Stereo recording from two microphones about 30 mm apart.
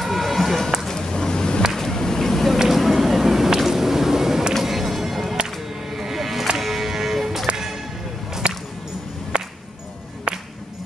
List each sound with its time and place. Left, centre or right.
0.0 s music: centre
0.8 s a sound: centre
1.8 s vehicle: centre
2.7 s a sound: centre
4.6 s music: centre
8.4 s whip: right
10.3 s music: right